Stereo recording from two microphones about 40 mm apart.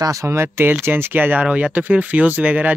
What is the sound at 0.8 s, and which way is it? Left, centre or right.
Speech, right.